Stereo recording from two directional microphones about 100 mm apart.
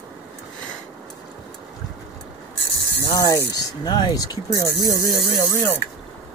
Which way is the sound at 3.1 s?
35° left (ahead or behind).